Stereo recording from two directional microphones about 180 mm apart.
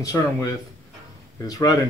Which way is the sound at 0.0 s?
20° left (ahead or behind).